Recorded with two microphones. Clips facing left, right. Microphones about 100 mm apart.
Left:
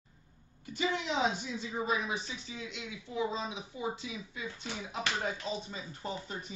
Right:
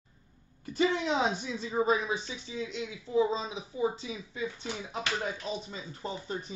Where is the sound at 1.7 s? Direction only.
35° right (ahead or behind).